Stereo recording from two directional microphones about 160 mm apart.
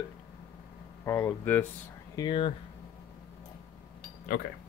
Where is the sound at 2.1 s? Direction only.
25° left (ahead or behind).